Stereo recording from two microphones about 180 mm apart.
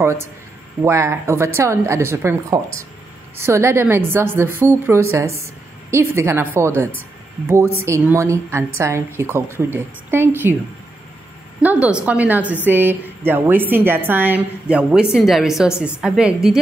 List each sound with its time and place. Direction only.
0.0 s a woman's voice: 15° right (ahead or behind)
11.6 s a woman's voice: 10° right (ahead or behind)